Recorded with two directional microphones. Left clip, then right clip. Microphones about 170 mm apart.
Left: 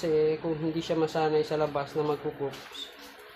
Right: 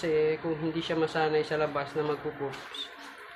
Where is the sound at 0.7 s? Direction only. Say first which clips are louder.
Even; 25° left (ahead or behind).